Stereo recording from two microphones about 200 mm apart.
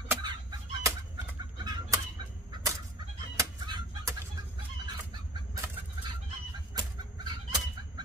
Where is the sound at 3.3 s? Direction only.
20° right (ahead or behind).